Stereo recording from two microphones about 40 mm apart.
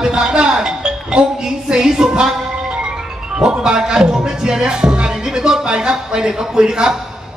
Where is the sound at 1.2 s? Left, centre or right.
Centre.